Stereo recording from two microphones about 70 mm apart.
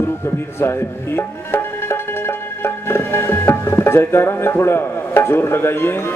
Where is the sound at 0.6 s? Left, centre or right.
Left.